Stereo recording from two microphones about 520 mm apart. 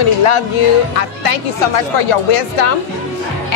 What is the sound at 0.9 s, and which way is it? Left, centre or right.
Speech, left.